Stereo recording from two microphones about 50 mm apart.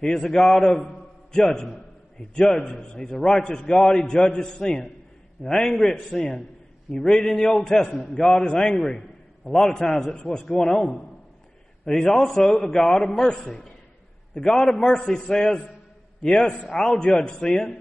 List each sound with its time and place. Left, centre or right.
0.0 s a man's voice: centre
8.2 s a man's voice: centre